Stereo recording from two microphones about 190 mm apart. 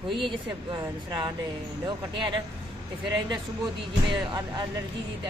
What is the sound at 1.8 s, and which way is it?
Speech, 25° right (ahead or behind).